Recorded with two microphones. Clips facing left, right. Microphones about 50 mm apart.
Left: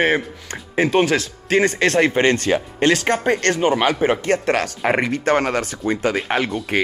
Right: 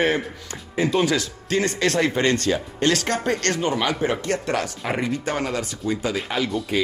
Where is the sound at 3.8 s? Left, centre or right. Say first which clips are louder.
Left 5 dB; left.